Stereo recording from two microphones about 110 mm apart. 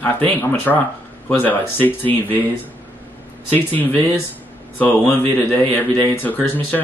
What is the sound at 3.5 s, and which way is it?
Speech, 15° left (ahead or behind).